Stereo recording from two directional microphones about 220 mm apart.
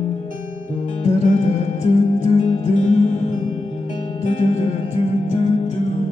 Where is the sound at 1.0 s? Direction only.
30° left (ahead or behind).